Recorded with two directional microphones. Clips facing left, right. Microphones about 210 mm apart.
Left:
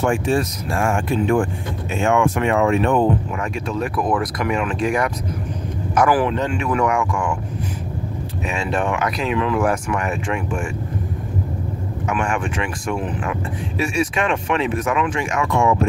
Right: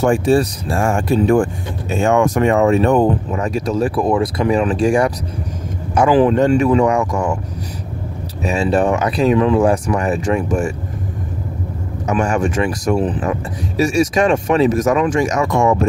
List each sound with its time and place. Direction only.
0.0 s a man's voice: 35° right (ahead or behind)
6.3 s speech: 45° right (ahead or behind)
6.7 s speech: 30° right (ahead or behind)
8.5 s speech: 35° right (ahead or behind)
12.1 s speech: 40° right (ahead or behind)